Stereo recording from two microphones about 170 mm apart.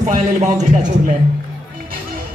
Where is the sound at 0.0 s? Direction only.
45° right (ahead or behind).